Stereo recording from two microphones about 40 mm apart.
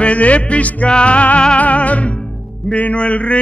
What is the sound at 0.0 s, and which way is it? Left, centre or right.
Speech, left.